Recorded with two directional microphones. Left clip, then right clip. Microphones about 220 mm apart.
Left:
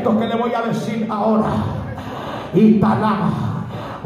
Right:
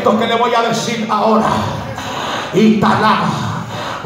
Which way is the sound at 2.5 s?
5° left (ahead or behind).